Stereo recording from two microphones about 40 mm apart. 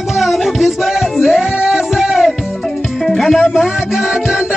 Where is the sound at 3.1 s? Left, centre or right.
Centre.